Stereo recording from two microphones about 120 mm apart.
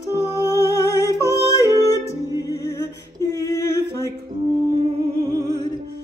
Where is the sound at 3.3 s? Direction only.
25° left (ahead or behind).